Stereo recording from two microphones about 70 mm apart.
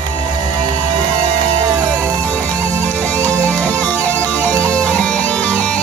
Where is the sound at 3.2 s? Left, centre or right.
Left.